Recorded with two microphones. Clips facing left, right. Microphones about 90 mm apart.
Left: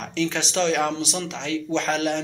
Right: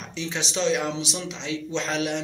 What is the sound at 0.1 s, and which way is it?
Speech, 60° left (ahead or behind).